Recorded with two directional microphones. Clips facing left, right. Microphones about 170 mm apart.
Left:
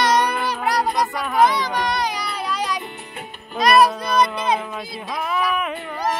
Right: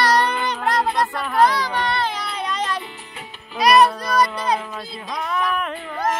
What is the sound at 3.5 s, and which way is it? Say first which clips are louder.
Music: even; centre (ahead or behind).